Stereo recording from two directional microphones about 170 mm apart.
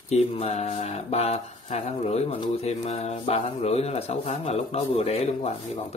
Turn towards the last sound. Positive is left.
turn(degrees=40)  # may be behind; listen again after turning